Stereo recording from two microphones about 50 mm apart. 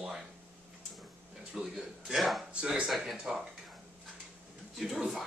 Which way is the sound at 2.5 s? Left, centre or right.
Right.